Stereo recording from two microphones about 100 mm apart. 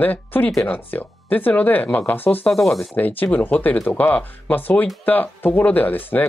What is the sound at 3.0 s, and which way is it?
Speech, 15° left (ahead or behind).